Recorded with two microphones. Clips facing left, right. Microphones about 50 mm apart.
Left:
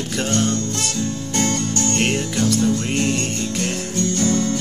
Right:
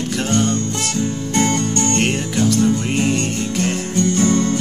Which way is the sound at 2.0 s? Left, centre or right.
Centre.